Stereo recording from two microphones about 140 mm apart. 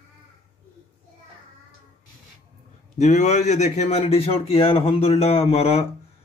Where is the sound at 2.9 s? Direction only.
55° left (ahead or behind).